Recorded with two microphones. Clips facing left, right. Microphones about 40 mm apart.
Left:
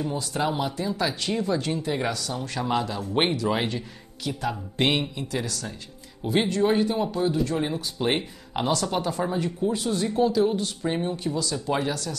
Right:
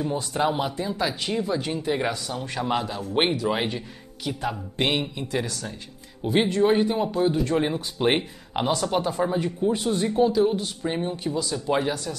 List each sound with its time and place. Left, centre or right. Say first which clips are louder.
0.0 s speech: right 2 dB; centre
4.7 s speech: left 1 dB; centre
5.1 s speech: right 2 dB; centre